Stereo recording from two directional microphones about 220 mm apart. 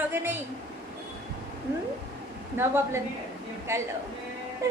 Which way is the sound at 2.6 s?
10° right (ahead or behind).